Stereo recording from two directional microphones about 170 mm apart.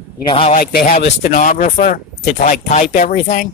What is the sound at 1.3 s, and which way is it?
Speech, 50° left (ahead or behind).